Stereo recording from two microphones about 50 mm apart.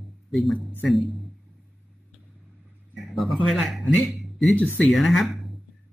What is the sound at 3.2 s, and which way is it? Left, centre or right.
Speech, centre.